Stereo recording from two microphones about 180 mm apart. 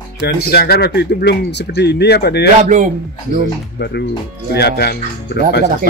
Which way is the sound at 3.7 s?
65° left (ahead or behind).